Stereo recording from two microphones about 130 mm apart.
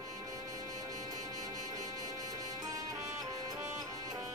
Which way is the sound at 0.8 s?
30° right (ahead or behind).